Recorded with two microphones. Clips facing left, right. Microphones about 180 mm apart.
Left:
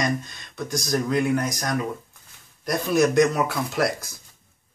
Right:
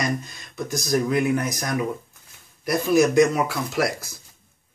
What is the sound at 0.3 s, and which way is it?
Speech, 5° right (ahead or behind).